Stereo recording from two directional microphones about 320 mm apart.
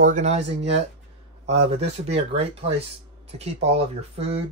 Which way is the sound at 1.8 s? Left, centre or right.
Centre.